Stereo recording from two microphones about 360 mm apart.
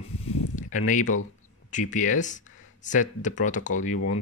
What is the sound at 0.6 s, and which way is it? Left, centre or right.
Speech, left.